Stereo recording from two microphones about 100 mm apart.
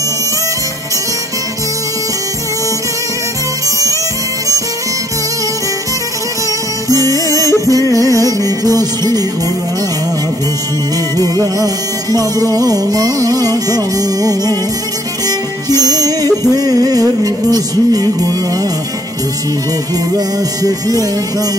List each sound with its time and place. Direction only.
3.6 s music: 35° right (ahead or behind)
6.9 s music: 35° right (ahead or behind)
11.1 s music: 40° right (ahead or behind)
20.2 s music: 40° right (ahead or behind)